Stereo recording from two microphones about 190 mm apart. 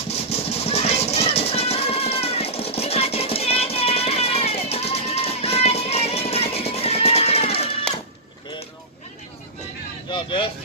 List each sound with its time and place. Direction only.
0.1 s music: 35° left (ahead or behind)
10.0 s vehicle: 25° left (ahead or behind)